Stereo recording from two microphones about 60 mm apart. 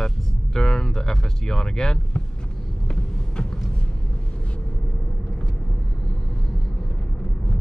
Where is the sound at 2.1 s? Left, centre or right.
Centre.